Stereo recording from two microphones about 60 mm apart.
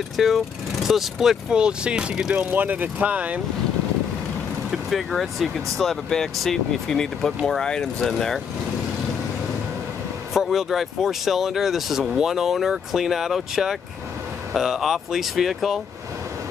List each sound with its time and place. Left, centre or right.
0.2 s speech: centre
1.6 s speech: centre
2.5 s speech: right
4.6 s speech: centre
10.3 s speech: centre